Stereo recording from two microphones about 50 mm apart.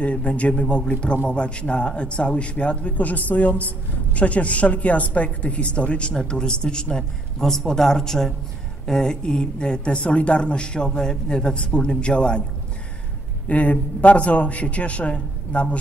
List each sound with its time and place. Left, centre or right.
0.0 s a woman's voice: left
13.5 s a woman's voice: left